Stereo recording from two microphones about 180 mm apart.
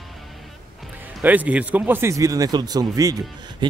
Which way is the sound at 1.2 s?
10° right (ahead or behind).